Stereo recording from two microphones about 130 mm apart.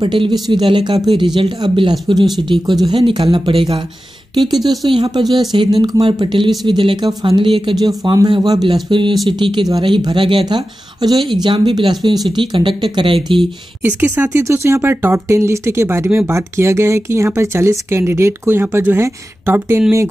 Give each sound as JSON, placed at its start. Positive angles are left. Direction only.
{"t": 0.0, "sound": "speech", "side_deg": -40}
{"t": 5.2, "sound": "speech", "side_deg": 0}
{"t": 5.5, "sound": "speech", "side_deg": -35}
{"t": 13.8, "sound": "speech", "side_deg": -15}